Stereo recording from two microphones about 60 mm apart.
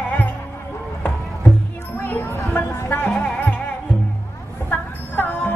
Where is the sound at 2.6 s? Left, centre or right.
Left.